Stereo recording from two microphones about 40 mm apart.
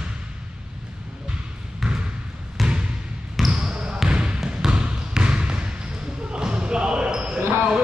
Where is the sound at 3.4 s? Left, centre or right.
Centre.